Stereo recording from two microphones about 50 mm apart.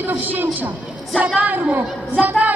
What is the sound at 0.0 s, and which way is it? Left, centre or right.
A woman's voice, right.